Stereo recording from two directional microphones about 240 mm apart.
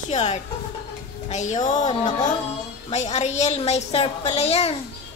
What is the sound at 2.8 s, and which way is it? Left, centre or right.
A woman's voice, left.